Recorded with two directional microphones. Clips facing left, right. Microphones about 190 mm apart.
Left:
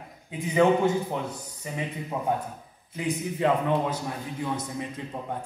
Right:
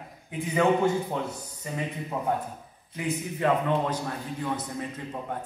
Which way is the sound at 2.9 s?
20° left (ahead or behind).